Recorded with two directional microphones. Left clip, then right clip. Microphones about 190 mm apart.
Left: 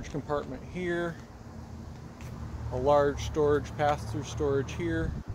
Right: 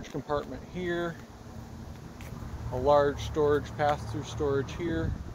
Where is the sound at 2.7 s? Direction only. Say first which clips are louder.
Right 1 dB; centre (ahead or behind).